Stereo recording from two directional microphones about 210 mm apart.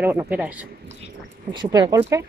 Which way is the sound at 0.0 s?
10° right (ahead or behind).